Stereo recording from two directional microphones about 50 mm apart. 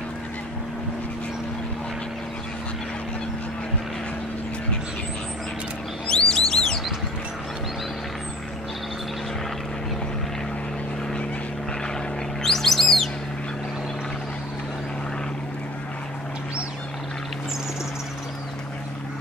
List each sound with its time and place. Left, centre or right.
6.0 s bird: centre
12.4 s bird: centre